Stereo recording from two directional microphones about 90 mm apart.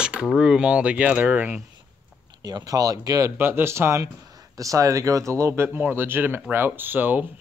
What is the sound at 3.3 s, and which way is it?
Speech, 25° right (ahead or behind).